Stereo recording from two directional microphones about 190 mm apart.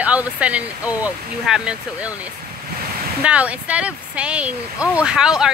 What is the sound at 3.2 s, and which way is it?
Speech, 5° right (ahead or behind).